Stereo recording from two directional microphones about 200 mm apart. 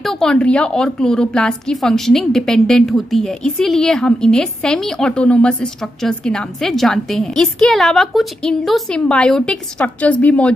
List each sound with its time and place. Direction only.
0.0 s a woman's voice: 5° left (ahead or behind)